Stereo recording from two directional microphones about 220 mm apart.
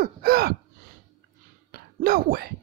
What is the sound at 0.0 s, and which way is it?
Gasp, 45° right (ahead or behind).